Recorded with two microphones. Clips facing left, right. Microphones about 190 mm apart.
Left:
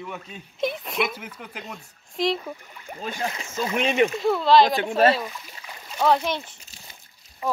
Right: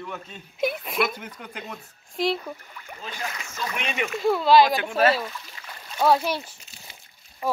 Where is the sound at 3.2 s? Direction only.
30° left (ahead or behind).